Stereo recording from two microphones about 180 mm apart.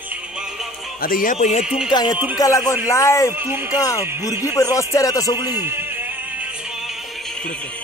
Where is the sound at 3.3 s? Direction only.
10° right (ahead or behind).